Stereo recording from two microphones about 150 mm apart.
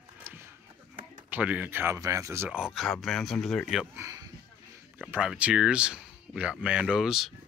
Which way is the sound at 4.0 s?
20° right (ahead or behind).